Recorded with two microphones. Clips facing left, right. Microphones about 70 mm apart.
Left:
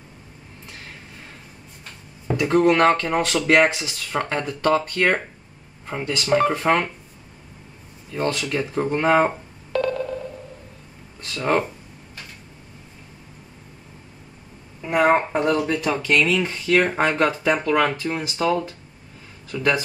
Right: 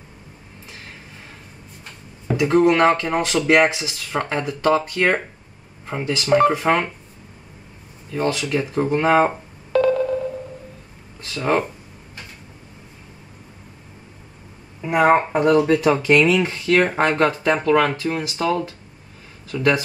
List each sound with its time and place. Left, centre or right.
2.2 s speech: centre
8.1 s telephone dialing: centre
11.2 s speech: centre
14.8 s speech: centre